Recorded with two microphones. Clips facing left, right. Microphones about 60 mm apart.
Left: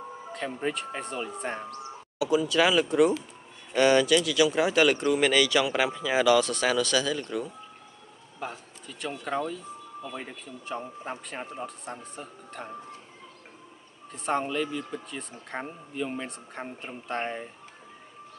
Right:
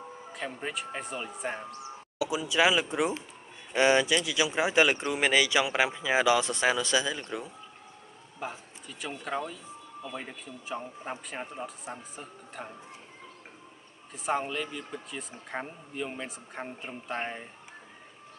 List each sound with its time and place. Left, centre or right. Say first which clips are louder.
0.5 s a man's voice: left 6 dB; centre
2.1 s speech: left 3 dB; centre
8.4 s a man's voice: left 1 dB; centre
14.1 s a man's voice: left 2 dB; centre